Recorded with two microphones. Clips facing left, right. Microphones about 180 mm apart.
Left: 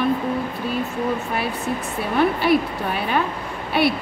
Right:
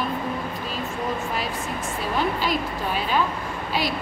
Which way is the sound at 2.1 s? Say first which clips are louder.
Left 7 dB; 60° left (ahead or behind).